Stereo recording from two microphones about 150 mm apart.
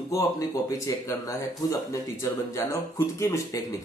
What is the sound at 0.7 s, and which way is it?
Speech, 20° left (ahead or behind).